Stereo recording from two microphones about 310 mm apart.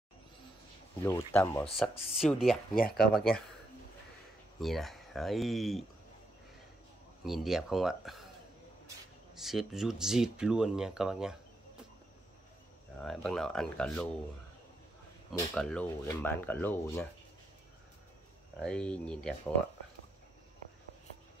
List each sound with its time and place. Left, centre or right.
1.0 s speech: centre
2.7 s speech: left
4.6 s speech: centre
7.2 s speech: centre
13.0 s speech: centre
15.3 s speech: centre
18.6 s speech: centre